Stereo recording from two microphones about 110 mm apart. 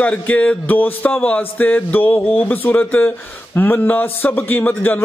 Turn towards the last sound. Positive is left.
turn(degrees=15)  # may be behind; listen again after turning